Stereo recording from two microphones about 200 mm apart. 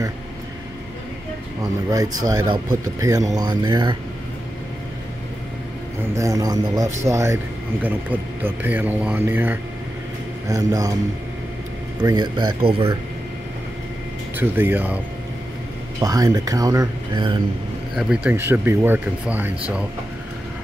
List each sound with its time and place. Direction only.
2.2 s speech: 20° right (ahead or behind)
6.1 s speech: 15° right (ahead or behind)
12.0 s speech: 20° right (ahead or behind)
14.3 s speech: 10° right (ahead or behind)
16.0 s speech: 15° right (ahead or behind)
17.9 s speech: 5° right (ahead or behind)